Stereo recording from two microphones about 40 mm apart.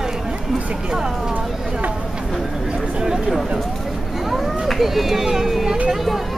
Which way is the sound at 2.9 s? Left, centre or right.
Centre.